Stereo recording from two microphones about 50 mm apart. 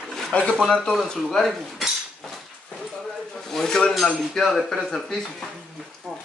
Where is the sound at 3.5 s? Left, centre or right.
Centre.